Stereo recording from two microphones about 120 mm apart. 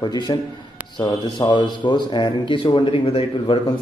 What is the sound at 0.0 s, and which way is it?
A man's voice, 35° left (ahead or behind).